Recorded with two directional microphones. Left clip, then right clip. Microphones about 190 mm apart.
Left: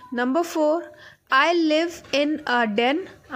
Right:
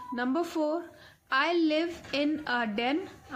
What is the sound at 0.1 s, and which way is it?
A woman's voice, 40° left (ahead or behind).